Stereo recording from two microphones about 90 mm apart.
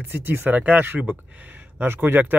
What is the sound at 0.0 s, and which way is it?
Speech, 25° right (ahead or behind).